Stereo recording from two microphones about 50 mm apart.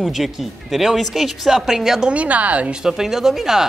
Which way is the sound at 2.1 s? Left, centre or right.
Right.